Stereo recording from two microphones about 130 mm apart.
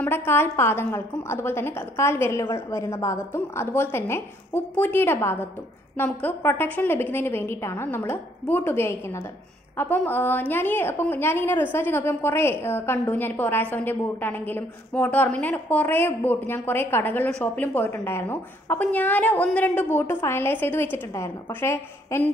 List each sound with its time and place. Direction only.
0.0 s a woman's voice: 15° left (ahead or behind)